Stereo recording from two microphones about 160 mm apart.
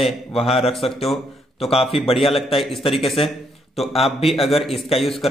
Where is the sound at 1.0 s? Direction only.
Centre (ahead or behind).